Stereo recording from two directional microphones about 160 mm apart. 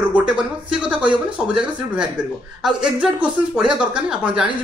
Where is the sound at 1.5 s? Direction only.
5° right (ahead or behind).